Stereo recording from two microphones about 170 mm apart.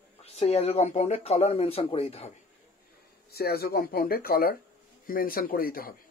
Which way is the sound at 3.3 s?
65° left (ahead or behind).